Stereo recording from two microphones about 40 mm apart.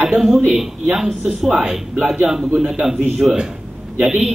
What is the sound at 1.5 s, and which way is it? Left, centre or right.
Speech, centre.